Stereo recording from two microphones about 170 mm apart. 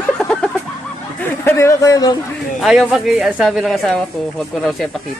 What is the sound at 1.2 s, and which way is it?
Speech, 15° left (ahead or behind).